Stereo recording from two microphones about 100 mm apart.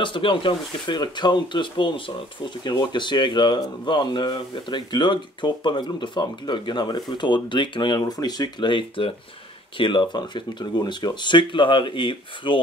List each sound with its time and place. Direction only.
0.0 s speech: 55° left (ahead or behind)